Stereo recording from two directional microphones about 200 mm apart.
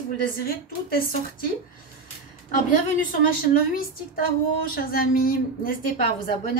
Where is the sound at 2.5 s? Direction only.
40° left (ahead or behind).